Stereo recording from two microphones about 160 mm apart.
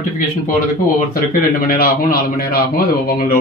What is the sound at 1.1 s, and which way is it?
A man's voice, 65° left (ahead or behind).